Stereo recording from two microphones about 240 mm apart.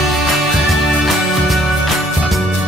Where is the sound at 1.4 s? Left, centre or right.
Centre.